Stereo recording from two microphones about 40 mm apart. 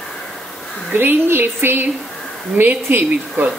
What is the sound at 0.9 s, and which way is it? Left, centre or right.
Speech, right.